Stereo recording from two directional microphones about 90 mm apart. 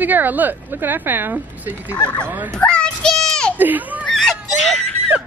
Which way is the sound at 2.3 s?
25° right (ahead or behind).